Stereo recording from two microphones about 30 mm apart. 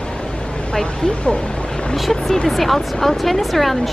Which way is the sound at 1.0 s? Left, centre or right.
Left.